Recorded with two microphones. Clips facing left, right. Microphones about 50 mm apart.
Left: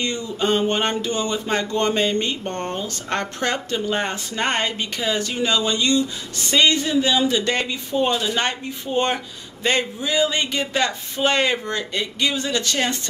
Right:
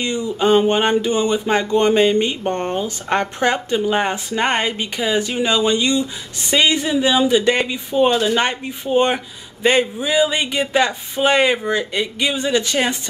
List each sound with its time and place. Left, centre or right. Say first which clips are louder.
0.0 s speech: right 4 dB; centre
8.5 s speech: right 4 dB; centre